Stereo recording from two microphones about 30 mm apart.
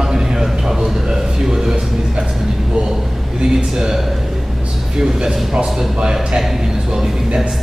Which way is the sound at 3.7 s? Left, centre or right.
Centre.